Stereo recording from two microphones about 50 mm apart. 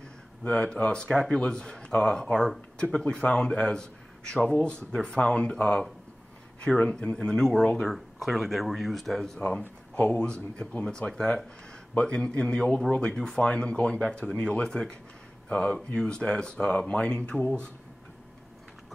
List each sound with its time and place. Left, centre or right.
0.4 s speech: left
2.3 s speech: centre
2.8 s a man's voice: centre
9.9 s speech: left
14.7 s speech: centre